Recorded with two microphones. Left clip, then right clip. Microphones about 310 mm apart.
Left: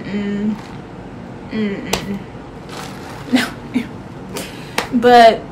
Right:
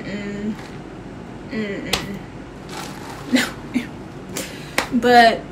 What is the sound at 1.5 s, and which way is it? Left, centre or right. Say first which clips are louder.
Speech: left 2 dB; centre.